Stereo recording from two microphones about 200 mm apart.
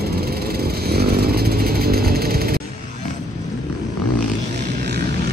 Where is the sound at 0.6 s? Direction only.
50° right (ahead or behind).